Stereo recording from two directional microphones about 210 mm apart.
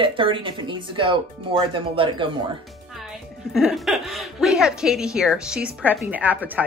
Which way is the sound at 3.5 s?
Centre (ahead or behind).